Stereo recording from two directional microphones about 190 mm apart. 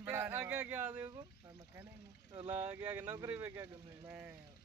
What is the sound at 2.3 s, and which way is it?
Speech, 30° right (ahead or behind).